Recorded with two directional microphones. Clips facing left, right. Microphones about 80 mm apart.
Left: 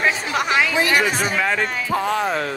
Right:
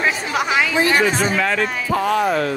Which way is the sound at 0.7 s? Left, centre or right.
Right.